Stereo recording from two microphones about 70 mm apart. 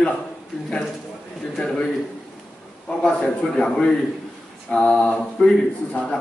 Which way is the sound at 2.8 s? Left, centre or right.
Centre.